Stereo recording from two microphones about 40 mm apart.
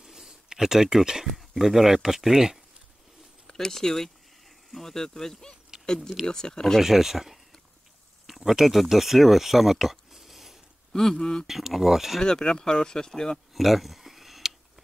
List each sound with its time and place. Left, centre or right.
0.0 s a sound: centre
1.3 s speech: centre
3.4 s speech: centre
4.5 s a sound: centre
4.9 s speech: centre
6.8 s speech: centre
10.9 s speech: centre
11.4 s speech: centre
12.2 s speech: centre
13.5 s a sound: centre